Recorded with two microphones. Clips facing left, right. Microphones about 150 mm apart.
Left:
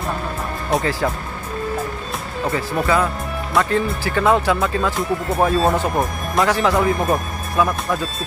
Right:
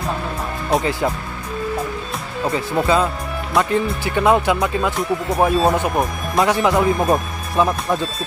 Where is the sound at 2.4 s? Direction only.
20° right (ahead or behind).